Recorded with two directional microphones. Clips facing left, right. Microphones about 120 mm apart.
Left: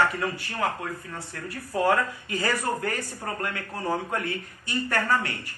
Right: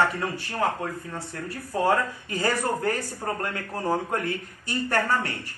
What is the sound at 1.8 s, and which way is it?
Speech, 30° right (ahead or behind).